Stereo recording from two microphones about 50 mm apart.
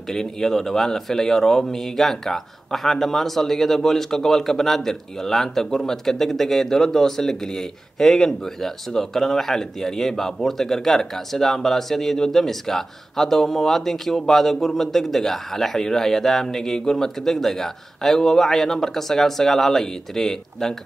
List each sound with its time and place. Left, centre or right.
0.1 s a man's voice: centre